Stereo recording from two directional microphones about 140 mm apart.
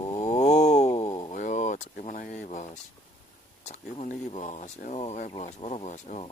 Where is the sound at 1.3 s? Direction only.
60° left (ahead or behind).